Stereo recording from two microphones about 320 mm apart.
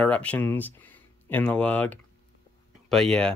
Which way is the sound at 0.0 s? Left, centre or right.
Centre.